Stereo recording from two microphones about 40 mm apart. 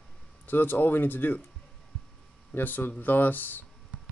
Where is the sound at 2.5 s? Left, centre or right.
Left.